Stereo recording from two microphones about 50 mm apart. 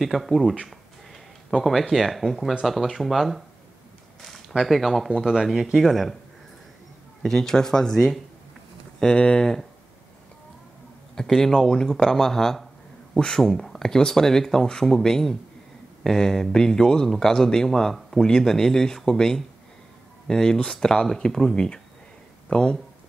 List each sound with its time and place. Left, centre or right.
0.0 s speech: centre
1.6 s speech: centre
5.2 s speech: centre
5.8 s speech: centre
7.2 s a man's voice: centre
11.1 s a man's voice: centre